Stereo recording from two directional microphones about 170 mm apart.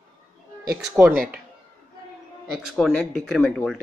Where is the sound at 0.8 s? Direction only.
Centre (ahead or behind).